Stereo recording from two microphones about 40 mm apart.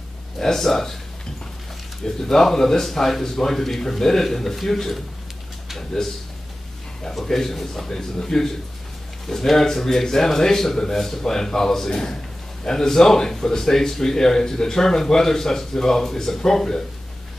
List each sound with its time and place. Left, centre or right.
0.4 s speech: centre
2.0 s speech: centre
7.2 s speech: centre